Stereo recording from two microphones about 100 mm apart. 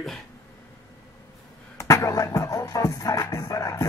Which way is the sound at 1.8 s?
30° left (ahead or behind).